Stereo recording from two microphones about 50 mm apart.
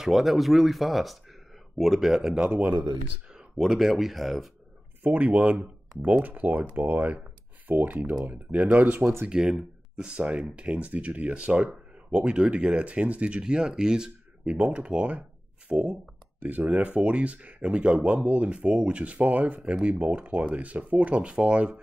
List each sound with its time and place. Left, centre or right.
0.0 s speech: centre
2.5 s speech: right
3.3 s speech: centre
5.0 s speech: right
9.3 s speech: centre
14.4 s speech: right